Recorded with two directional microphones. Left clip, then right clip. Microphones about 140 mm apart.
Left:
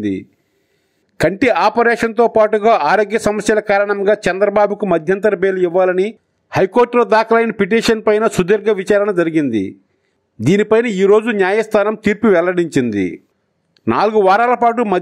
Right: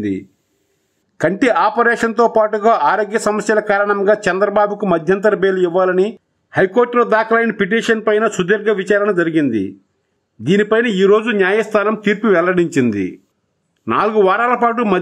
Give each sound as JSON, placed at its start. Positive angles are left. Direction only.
{"t": 1.1, "sound": "a man's voice", "side_deg": 30}